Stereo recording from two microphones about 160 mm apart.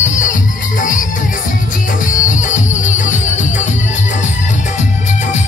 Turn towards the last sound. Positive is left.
turn(degrees=50)  # may be behind; listen again after turning